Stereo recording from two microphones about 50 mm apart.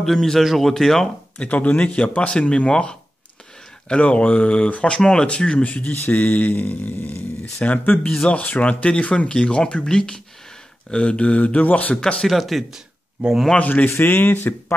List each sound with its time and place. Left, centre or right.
0.0 s speech: centre
1.4 s speech: left
5.8 s speech: left
8.1 s speech: left
12.3 s speech: centre
13.2 s speech: right
13.6 s speech: left
13.8 s speech: left